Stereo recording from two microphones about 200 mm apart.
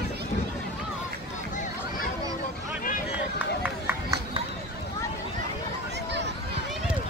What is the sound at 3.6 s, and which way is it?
Run, 10° right (ahead or behind).